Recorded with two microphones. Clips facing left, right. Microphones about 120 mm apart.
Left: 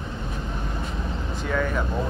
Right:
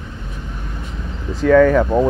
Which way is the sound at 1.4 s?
90° right.